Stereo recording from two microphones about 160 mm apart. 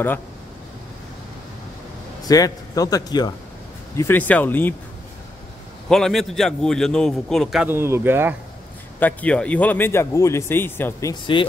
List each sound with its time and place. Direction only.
2.2 s a man's voice: 20° left (ahead or behind)
5.9 s a man's voice: 5° left (ahead or behind)
7.6 s speech: 15° right (ahead or behind)
9.0 s speech: 10° left (ahead or behind)